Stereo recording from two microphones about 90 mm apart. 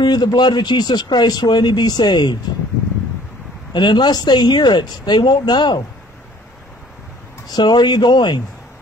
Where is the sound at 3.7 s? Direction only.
55° left (ahead or behind).